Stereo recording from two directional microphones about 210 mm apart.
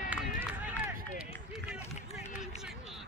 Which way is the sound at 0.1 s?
5° right (ahead or behind).